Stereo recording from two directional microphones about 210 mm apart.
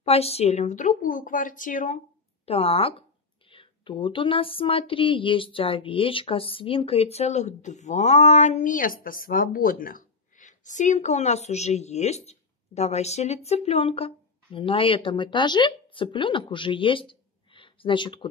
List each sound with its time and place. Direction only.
0.0 s speech: 30° left (ahead or behind)
2.4 s speech: 30° left (ahead or behind)